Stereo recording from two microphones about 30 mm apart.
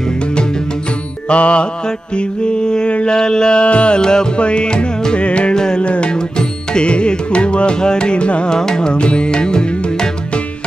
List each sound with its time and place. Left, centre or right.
1.3 s music: left
2.1 s mantra: left
3.1 s music: left
4.0 s mantra: left
4.4 s music: left
5.5 s music: left
5.8 s music: left
6.1 s music: left
8.5 s mantra: left
8.9 s music: left